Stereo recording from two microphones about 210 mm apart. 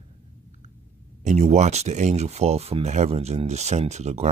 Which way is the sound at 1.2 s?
30° right (ahead or behind).